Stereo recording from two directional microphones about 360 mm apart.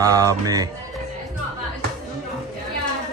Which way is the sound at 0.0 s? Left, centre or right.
Centre.